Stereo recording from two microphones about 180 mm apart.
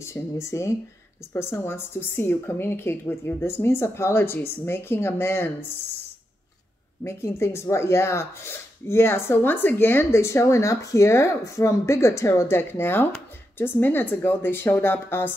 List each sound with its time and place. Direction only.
0.0 s speech: 15° left (ahead or behind)
7.1 s speech: 15° left (ahead or behind)